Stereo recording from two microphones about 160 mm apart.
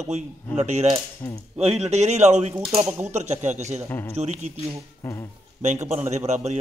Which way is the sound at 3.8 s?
15° left (ahead or behind).